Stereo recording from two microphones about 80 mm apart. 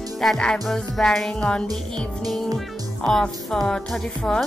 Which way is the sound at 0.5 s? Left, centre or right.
Centre.